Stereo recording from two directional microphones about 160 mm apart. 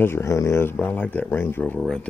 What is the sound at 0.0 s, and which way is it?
Speech, 15° left (ahead or behind).